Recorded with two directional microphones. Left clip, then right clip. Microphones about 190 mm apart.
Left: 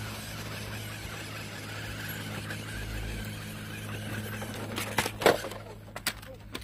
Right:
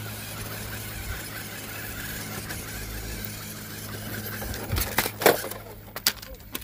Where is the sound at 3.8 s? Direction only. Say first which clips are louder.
Right 3 dB; 35° right (ahead or behind).